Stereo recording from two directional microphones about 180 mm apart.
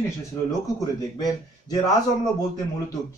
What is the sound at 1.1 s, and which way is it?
Speech, 20° left (ahead or behind).